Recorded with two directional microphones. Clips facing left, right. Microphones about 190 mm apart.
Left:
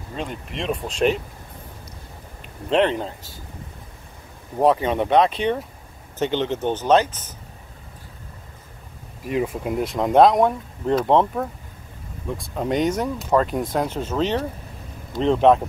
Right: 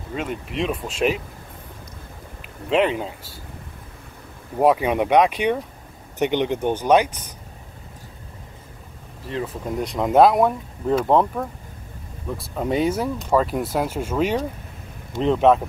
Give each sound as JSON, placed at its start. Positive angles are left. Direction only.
{"t": 0.1, "sound": "speech", "side_deg": -5}
{"t": 2.7, "sound": "speech", "side_deg": -5}
{"t": 4.6, "sound": "speech", "side_deg": -10}
{"t": 9.2, "sound": "speech", "side_deg": 15}